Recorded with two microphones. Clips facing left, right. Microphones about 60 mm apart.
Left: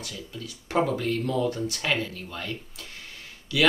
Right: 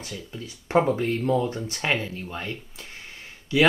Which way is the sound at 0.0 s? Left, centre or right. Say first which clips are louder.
Right 1 dB; right.